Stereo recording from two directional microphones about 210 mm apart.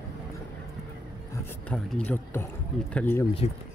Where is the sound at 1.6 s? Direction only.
5° left (ahead or behind).